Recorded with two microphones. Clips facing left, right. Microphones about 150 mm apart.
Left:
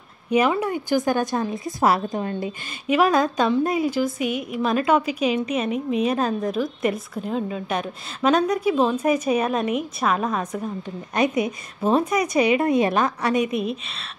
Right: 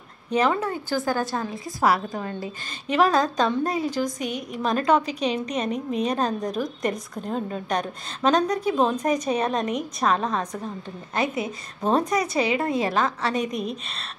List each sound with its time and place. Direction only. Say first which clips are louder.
0.3 s a woman's voice: left 3 dB; 10° left (ahead or behind)
2.9 s a woman's voice: left 2 dB; 10° left (ahead or behind)